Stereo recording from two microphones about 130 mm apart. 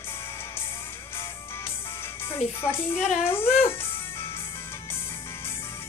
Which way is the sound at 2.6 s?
20° left (ahead or behind).